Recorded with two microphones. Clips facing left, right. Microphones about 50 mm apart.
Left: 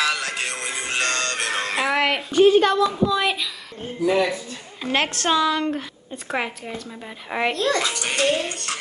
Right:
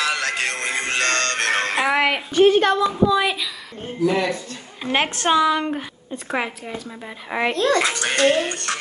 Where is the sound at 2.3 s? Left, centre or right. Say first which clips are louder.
Even; right.